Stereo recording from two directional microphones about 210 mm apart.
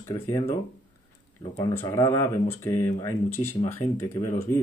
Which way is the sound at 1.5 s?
10° left (ahead or behind).